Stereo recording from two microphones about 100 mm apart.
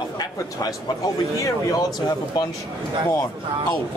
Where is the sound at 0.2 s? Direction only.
40° left (ahead or behind).